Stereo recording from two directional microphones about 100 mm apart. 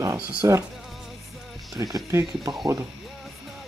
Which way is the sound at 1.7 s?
35° right (ahead or behind).